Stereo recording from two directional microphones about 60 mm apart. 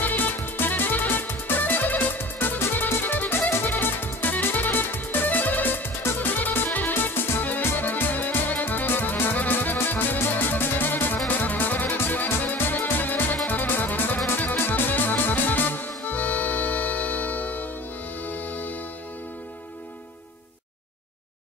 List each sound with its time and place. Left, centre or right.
0.0 s music: left